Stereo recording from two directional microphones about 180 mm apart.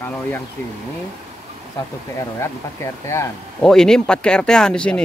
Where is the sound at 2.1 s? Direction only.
15° left (ahead or behind).